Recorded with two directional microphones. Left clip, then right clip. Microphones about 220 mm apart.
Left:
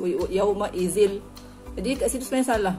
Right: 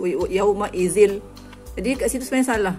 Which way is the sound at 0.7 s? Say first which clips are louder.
Right 5 dB; 60° right (ahead or behind).